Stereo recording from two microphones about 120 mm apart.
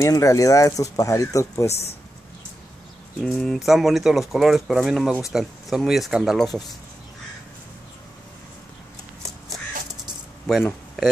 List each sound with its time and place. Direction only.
0.0 s speech: 25° left (ahead or behind)
1.7 s speech: 60° left (ahead or behind)
3.2 s speech: centre (ahead or behind)